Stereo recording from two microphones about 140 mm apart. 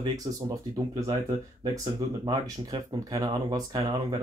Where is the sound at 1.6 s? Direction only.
30° right (ahead or behind).